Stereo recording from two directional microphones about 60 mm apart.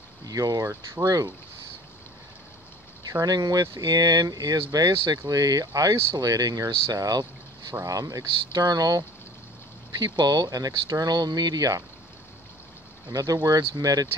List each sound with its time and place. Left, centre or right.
0.2 s speech: right
3.0 s speech: right
10.5 s speech: right
13.1 s speech: right